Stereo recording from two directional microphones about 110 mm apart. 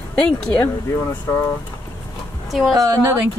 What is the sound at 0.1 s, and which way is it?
Speech, 10° left (ahead or behind).